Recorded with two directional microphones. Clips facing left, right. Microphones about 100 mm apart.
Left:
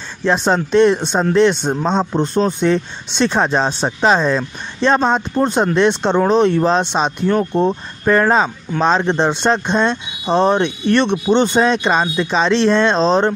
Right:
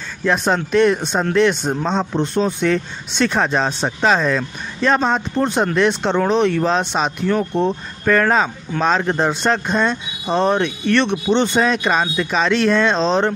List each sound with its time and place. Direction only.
0.2 s speech: 30° left (ahead or behind)
2.6 s speech: 25° left (ahead or behind)
7.5 s speech: 40° left (ahead or behind)
8.0 s speech: 25° left (ahead or behind)
12.9 s speech: 35° left (ahead or behind)